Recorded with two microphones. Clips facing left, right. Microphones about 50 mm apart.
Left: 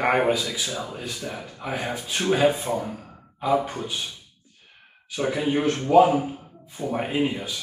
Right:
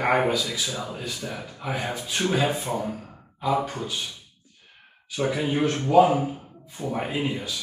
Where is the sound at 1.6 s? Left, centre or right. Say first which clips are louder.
Even; centre.